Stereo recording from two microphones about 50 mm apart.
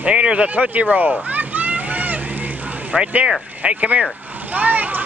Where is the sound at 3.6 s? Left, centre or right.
Right.